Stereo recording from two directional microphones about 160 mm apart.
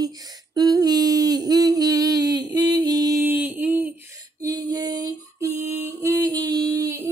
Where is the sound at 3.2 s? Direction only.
10° right (ahead or behind).